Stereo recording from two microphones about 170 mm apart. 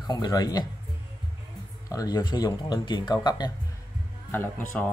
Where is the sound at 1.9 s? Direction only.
20° left (ahead or behind).